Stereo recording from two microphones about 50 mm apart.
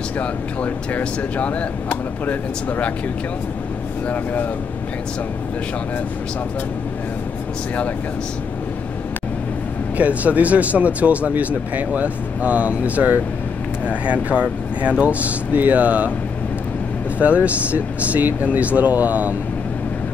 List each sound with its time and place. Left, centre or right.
0.2 s speech: left
4.1 s speech: left
9.9 s speech: right
17.5 s speech: right